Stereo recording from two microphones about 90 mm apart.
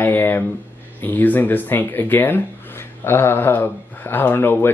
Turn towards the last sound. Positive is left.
turn(degrees=20)  # may be behind; listen again after turning